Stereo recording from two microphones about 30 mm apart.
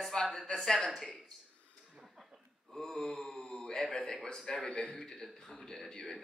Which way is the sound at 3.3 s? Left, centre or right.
Left.